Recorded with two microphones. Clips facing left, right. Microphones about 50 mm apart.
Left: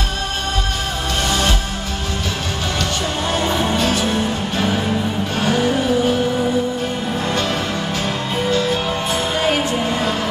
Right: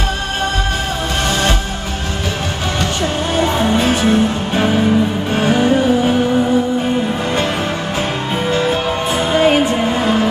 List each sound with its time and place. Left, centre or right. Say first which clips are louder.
3.7 s music: right 4 dB; right
5.3 s music: right 4 dB; centre
8.5 s music: right 3 dB; right